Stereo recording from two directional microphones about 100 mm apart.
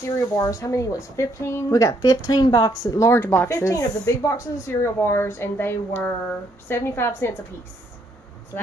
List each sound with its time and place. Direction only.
0.4 s speech: 30° left (ahead or behind)
3.2 s speech: 20° left (ahead or behind)
3.4 s speech: 35° left (ahead or behind)